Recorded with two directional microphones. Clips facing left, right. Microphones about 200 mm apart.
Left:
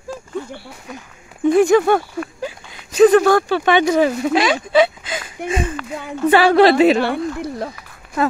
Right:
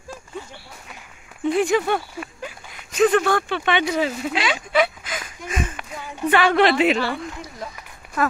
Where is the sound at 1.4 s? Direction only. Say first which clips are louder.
Left 7 dB; 45° left (ahead or behind).